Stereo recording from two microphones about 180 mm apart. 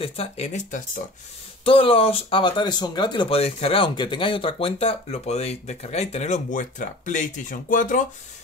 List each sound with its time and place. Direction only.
0.0 s speech: 35° left (ahead or behind)
1.6 s speech: 30° left (ahead or behind); by 8.0 s 45° left (ahead or behind)